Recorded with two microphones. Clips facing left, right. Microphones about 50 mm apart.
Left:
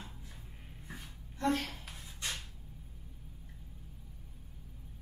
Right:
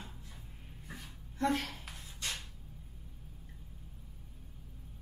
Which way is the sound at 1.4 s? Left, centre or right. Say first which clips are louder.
Even; centre.